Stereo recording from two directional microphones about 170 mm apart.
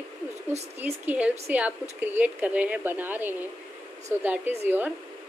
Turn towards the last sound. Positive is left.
turn(degrees=-10)  # may be behind; listen again after turning